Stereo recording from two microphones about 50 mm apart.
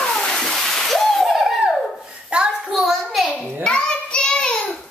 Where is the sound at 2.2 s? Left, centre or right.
Centre.